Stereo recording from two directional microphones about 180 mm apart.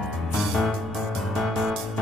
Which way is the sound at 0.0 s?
Centre (ahead or behind).